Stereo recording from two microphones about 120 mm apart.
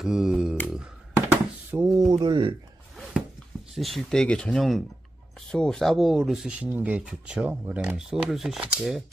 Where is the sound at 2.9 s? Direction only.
Centre (ahead or behind).